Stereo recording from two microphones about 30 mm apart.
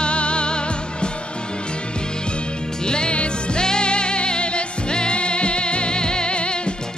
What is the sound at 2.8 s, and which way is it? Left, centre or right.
Music, left.